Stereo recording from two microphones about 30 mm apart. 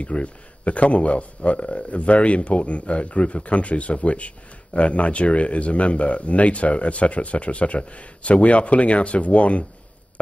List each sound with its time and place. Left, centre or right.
0.0 s speech: left